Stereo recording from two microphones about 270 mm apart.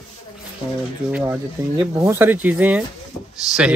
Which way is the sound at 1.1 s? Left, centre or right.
Centre.